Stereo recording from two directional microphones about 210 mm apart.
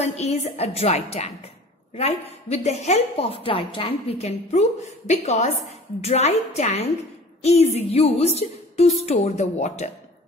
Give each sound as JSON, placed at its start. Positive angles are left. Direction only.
{"t": 0.0, "sound": "a woman's voice", "side_deg": 30}